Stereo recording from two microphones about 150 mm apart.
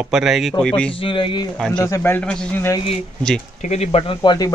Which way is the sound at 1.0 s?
35° left (ahead or behind).